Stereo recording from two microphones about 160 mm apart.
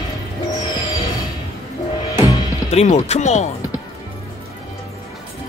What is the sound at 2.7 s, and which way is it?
Speech, 45° left (ahead or behind).